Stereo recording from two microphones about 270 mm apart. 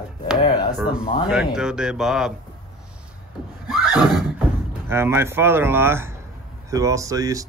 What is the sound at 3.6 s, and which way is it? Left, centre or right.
Neigh, centre.